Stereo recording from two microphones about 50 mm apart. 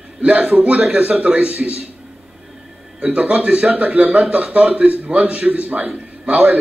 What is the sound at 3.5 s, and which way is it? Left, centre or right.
Speech, centre.